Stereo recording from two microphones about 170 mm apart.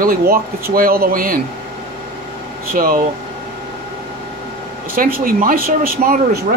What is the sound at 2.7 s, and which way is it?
Speech, 55° right (ahead or behind).